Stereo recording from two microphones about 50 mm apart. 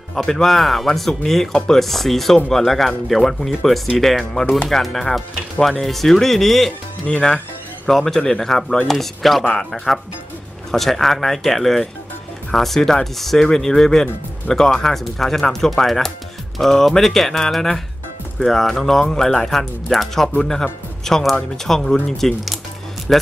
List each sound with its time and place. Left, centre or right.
0.1 s speech: centre
7.1 s speech: centre
7.9 s speech: centre